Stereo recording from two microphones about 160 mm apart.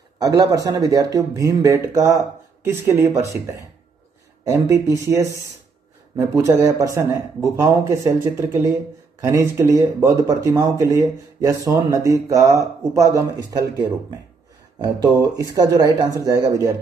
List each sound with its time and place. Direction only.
0.2 s speech: 20° right (ahead or behind)